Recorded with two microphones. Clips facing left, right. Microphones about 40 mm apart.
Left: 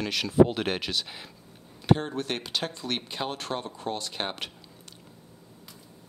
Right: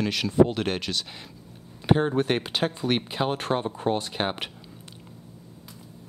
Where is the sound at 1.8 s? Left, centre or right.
Centre.